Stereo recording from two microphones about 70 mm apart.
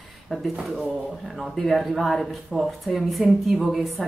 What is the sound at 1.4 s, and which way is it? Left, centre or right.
Speech, centre.